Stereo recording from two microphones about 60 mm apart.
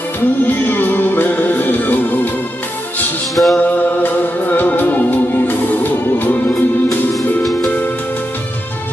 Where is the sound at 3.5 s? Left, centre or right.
Left.